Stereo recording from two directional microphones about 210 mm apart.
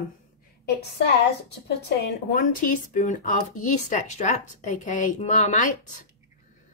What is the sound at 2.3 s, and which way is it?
A woman's voice, 40° left (ahead or behind).